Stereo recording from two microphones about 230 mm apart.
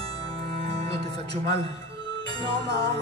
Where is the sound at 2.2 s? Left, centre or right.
Centre.